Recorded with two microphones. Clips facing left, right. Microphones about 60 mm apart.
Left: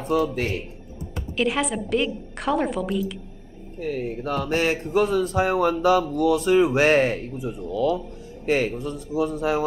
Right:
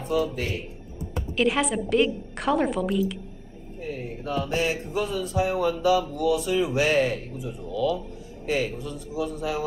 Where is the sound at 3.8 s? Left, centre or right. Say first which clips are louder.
Left 6 dB; left.